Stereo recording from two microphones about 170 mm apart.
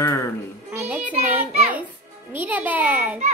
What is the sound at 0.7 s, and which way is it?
A child's voice, 15° right (ahead or behind).